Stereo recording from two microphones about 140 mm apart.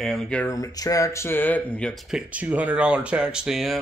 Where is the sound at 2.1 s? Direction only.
10° right (ahead or behind).